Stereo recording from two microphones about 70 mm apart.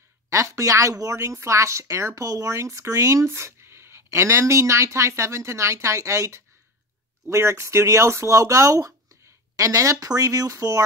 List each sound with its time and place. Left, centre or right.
0.3 s speech: right